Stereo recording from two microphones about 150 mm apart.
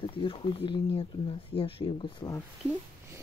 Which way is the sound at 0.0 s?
35° left (ahead or behind).